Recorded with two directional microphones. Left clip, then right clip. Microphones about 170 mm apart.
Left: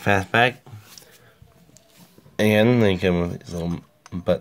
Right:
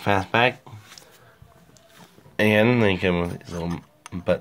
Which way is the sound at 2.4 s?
25° left (ahead or behind).